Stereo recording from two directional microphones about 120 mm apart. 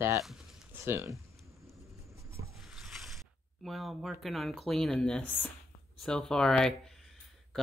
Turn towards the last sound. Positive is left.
turn(degrees=5)  # may be behind; listen again after turning